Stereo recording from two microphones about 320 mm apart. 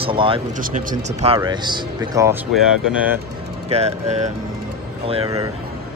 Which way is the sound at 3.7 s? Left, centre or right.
Centre.